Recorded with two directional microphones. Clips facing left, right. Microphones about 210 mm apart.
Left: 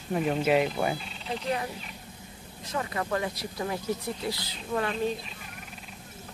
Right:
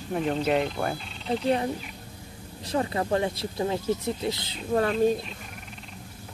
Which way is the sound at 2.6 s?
35° right (ahead or behind).